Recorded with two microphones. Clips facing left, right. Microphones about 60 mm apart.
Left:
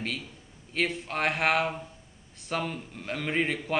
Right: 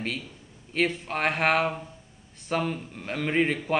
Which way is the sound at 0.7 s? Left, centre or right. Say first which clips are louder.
Right 3 dB; centre.